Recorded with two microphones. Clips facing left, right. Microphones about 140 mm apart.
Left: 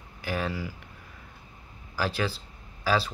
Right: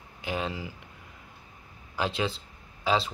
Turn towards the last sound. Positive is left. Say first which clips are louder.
# even
turn(degrees=-25)  # may be behind; listen again after turning